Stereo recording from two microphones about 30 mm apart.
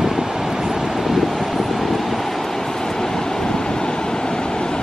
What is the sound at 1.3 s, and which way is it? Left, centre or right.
Vehicle, centre.